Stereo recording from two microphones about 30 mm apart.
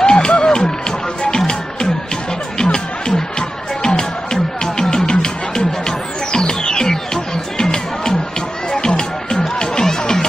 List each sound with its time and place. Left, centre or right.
0.0 s music: left
2.6 s music: left